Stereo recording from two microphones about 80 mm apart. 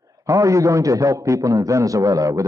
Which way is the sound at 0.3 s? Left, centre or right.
Right.